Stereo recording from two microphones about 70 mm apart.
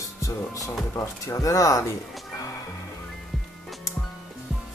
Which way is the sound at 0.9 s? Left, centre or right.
Left.